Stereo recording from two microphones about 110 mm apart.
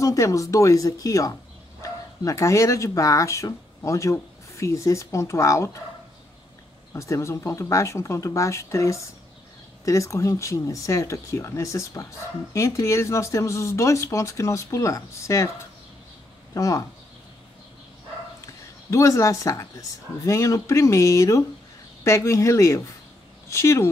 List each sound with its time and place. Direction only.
0.0 s speech: 30° left (ahead or behind)
6.9 s speech: 25° left (ahead or behind)
16.5 s speech: 30° left (ahead or behind)
18.4 s a sound: 30° left (ahead or behind)
20.2 s speech: 30° left (ahead or behind)